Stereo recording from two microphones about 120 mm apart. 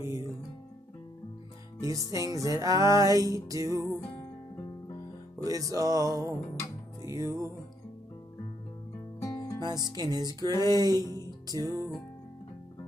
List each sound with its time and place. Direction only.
1.8 s music: 30° right (ahead or behind)
5.4 s music: 30° right (ahead or behind)
9.2 s music: 25° left (ahead or behind)
9.7 s music: 35° right (ahead or behind)